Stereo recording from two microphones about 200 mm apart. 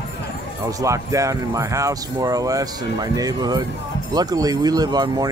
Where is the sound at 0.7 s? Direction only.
15° right (ahead or behind).